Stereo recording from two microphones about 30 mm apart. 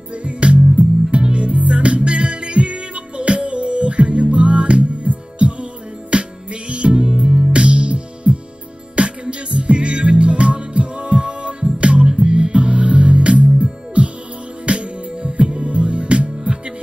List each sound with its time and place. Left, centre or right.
0.1 s music: right